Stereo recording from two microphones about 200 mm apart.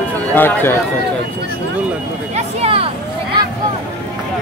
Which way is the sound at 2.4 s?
30° right (ahead or behind).